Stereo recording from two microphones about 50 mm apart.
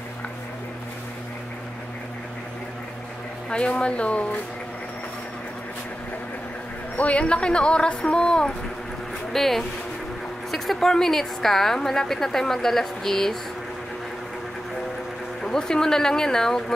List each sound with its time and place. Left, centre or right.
3.4 s speech: centre
7.0 s speech: left
9.3 s a woman's voice: centre
15.4 s a woman's voice: centre